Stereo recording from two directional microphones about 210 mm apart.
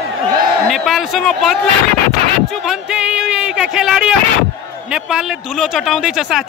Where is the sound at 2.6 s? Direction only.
5° right (ahead or behind).